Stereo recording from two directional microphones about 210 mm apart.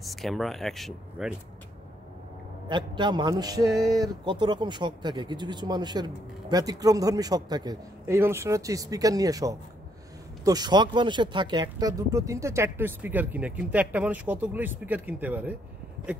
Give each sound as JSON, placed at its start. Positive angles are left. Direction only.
{"t": 0.0, "sound": "speech", "side_deg": 0}
{"t": 2.7, "sound": "a man's voice", "side_deg": -20}